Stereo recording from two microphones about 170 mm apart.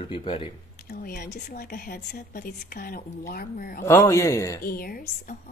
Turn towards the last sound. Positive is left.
turn(degrees=60)  # may be behind; listen again after turning